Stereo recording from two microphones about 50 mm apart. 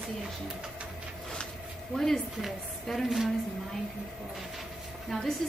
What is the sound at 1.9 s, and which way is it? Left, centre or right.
A woman's voice, centre.